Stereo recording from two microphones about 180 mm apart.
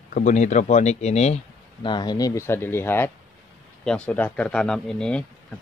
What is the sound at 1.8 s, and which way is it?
Speech, 25° left (ahead or behind).